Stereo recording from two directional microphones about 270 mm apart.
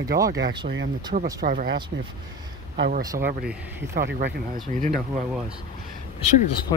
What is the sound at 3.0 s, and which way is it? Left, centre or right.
Speech, centre.